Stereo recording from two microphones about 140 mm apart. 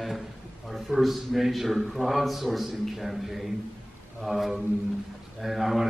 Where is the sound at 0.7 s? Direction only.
Centre (ahead or behind).